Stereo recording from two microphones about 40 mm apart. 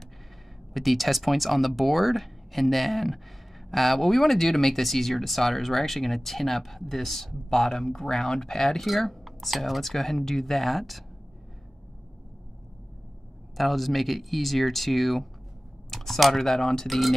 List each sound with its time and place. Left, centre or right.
0.7 s speech: centre
13.6 s speech: centre